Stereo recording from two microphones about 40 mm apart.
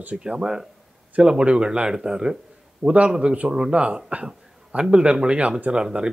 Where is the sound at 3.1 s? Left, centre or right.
Right.